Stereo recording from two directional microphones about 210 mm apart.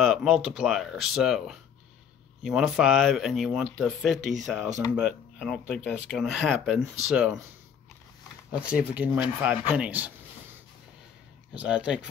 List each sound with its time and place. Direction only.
0.0 s speech: centre (ahead or behind)
4.2 s speech: 35° right (ahead or behind)
4.9 s speech: centre (ahead or behind)
8.5 s speech: 5° right (ahead or behind)
11.5 s speech: 5° right (ahead or behind)